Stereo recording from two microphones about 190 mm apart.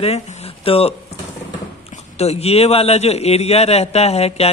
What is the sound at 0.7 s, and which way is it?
Speech, 30° left (ahead or behind).